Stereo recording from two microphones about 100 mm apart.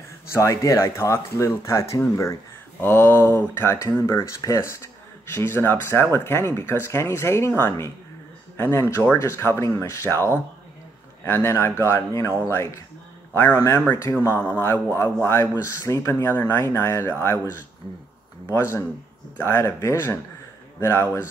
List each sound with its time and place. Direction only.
0.3 s speech: 30° left (ahead or behind)